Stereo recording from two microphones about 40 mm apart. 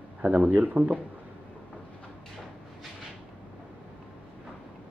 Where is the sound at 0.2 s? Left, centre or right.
Right.